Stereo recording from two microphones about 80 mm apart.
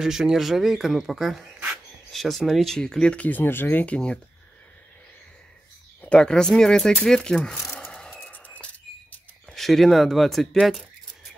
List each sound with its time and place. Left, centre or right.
0.0 s speech: centre
5.9 s speech: centre
7.9 s a sound: centre
9.5 s speech: centre